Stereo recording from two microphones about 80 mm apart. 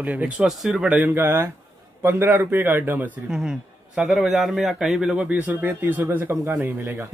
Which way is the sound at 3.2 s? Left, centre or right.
Centre.